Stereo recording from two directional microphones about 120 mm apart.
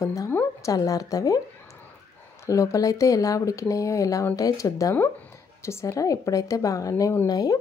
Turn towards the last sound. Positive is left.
turn(degrees=35)  # may be behind; listen again after turning